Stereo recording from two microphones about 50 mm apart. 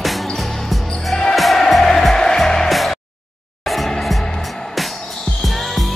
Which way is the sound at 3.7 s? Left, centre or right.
Centre.